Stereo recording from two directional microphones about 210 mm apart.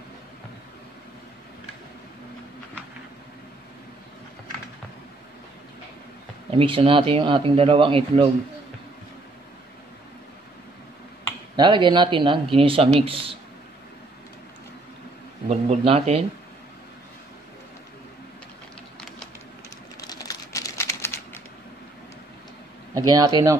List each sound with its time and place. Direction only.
6.5 s speech: 25° right (ahead or behind)
11.5 s speech: 20° right (ahead or behind)
15.4 s speech: 30° right (ahead or behind)
20.0 s typing: 15° left (ahead or behind)
22.9 s speech: 15° right (ahead or behind)